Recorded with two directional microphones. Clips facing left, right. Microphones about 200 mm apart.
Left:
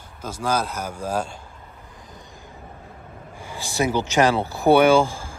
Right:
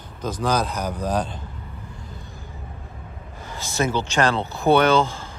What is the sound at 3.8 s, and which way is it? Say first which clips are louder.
Speech: left 2 dB; 15° left (ahead or behind).